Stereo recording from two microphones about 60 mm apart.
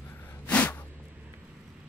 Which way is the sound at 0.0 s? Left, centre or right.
Left.